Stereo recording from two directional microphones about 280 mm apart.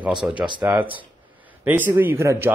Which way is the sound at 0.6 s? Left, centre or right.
Centre.